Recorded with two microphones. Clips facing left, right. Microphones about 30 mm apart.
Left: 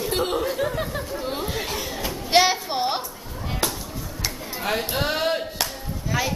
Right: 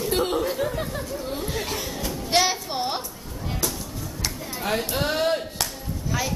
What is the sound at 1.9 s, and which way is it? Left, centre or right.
Music, centre.